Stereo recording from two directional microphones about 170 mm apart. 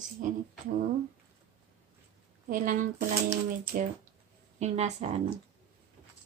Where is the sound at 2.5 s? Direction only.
50° right (ahead or behind).